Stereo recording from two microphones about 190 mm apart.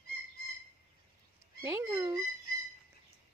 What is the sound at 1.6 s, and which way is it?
Speech, 15° right (ahead or behind).